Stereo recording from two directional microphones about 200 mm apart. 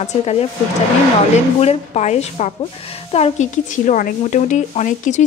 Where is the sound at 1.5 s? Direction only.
35° left (ahead or behind).